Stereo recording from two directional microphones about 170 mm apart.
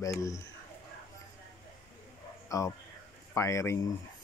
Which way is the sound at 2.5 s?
20° left (ahead or behind).